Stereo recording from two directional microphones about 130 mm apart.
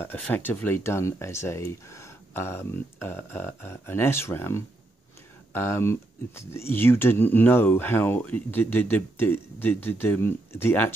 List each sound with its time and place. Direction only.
0.0 s speech: 15° left (ahead or behind)